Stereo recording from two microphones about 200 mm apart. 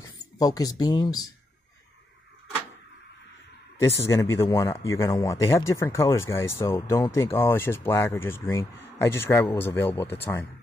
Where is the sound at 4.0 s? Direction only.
15° left (ahead or behind).